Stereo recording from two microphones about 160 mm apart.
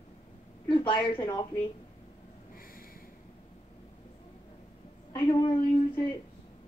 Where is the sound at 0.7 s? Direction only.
30° left (ahead or behind).